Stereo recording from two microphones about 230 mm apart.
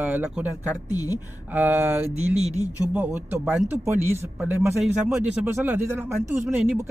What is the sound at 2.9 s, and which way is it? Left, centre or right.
Speech, centre.